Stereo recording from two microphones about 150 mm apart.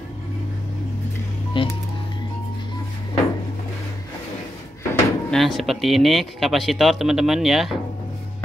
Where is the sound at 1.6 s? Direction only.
35° left (ahead or behind).